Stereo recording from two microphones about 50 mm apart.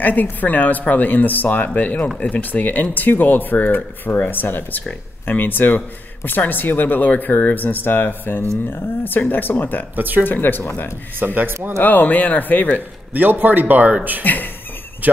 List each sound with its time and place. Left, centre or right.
0.0 s speech: left
2.4 s speech: left
9.9 s a man's voice: right
10.2 s speech: left
11.1 s a man's voice: right
11.8 s speech: left
13.1 s a man's voice: right
14.2 s speech: left